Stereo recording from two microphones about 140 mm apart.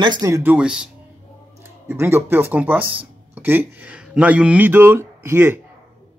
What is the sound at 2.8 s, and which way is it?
Speech, 40° right (ahead or behind).